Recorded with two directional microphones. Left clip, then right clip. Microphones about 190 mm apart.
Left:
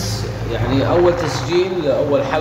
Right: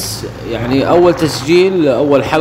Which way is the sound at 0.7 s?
40° right (ahead or behind).